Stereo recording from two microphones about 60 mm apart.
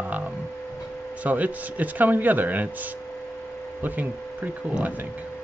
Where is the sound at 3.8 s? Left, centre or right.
Right.